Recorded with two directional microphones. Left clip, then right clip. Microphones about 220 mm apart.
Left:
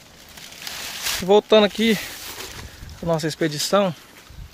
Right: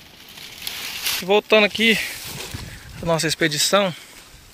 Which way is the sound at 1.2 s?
20° left (ahead or behind).